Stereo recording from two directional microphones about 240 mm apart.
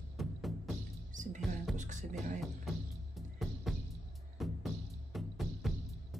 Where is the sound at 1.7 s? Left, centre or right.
Right.